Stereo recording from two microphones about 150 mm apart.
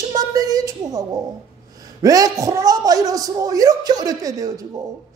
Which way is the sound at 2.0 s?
25° right (ahead or behind).